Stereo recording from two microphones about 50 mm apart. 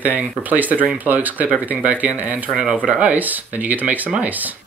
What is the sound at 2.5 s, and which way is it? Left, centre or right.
Speech, centre.